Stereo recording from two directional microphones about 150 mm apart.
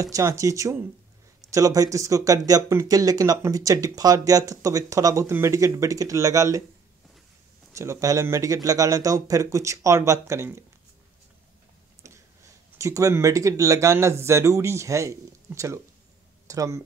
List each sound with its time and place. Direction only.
0.0 s speech: 20° right (ahead or behind)
7.7 s speech: 20° right (ahead or behind)
12.7 s speech: 20° right (ahead or behind)